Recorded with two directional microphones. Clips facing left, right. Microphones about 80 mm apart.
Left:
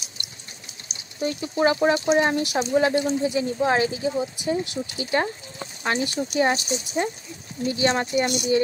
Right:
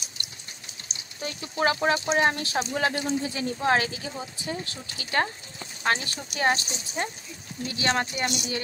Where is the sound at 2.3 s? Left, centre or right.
Centre.